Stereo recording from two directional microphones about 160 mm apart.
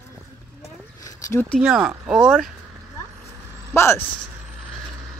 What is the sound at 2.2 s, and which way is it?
Speech, 5° left (ahead or behind).